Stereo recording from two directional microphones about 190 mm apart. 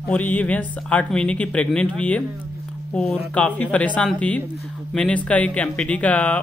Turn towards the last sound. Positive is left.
turn(degrees=5)  # may be behind; listen again after turning